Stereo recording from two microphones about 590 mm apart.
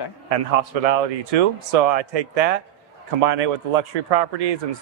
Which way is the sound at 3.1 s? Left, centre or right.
Right.